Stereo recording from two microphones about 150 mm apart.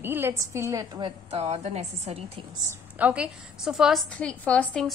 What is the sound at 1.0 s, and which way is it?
A woman's voice, 45° right (ahead or behind).